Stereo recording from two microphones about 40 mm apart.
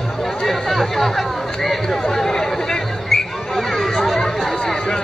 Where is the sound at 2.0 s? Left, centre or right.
Centre.